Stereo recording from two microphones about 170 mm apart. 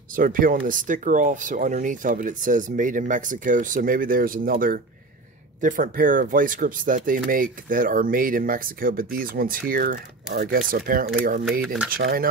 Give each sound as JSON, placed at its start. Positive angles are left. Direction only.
{"t": 0.1, "sound": "speech", "side_deg": -55}
{"t": 11.6, "sound": "speech", "side_deg": 0}
{"t": 11.9, "sound": "speech", "side_deg": -60}